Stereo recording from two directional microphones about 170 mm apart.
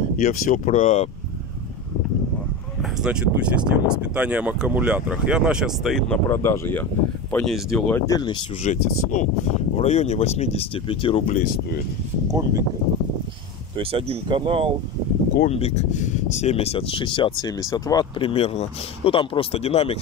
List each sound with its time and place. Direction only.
0.2 s speech: 45° left (ahead or behind)
2.8 s speech: 5° right (ahead or behind)
7.9 s speech: 25° left (ahead or behind)
8.6 s speech: 45° left (ahead or behind); by 11.2 s 30° left (ahead or behind)
11.2 s speech: 55° left (ahead or behind)
12.3 s speech: 20° right (ahead or behind)
13.7 s speech: 30° right (ahead or behind)
15.4 s speech: 40° left (ahead or behind); by 18.3 s 25° left (ahead or behind)
18.3 s speech: 35° left (ahead or behind)